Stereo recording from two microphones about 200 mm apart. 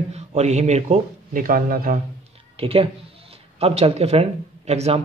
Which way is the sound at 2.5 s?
30° right (ahead or behind).